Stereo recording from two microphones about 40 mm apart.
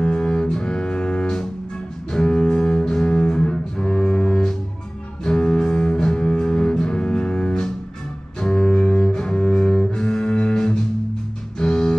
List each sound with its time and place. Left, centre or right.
0.0 s double bass: left
2.1 s cello: left
5.2 s double bass: left
11.5 s music: centre